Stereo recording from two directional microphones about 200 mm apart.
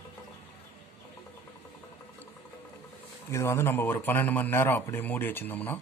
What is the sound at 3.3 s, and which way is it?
Speech, 15° left (ahead or behind).